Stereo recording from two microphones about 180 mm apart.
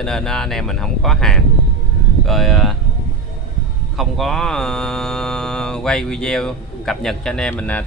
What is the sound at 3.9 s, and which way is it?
Speech, centre (ahead or behind).